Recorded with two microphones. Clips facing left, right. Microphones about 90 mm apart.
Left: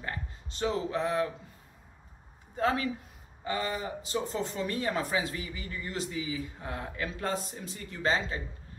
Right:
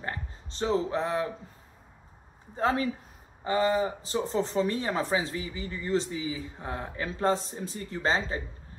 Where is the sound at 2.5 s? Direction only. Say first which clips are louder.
Right 2 dB; 30° right (ahead or behind).